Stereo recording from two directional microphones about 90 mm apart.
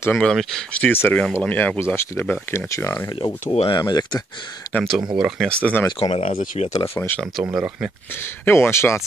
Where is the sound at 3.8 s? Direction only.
50° left (ahead or behind).